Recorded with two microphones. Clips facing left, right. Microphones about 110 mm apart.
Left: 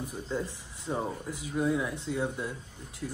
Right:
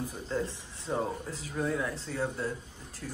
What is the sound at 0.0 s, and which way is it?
Speech, 15° left (ahead or behind).